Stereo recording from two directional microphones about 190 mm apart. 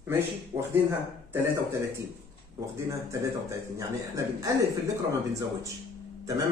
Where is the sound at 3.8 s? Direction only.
15° right (ahead or behind).